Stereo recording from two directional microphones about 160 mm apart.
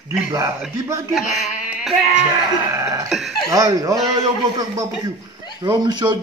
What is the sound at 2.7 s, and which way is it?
Cough, 20° right (ahead or behind).